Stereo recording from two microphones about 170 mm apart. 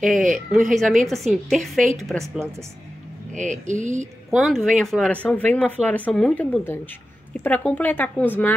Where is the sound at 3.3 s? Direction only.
45° right (ahead or behind).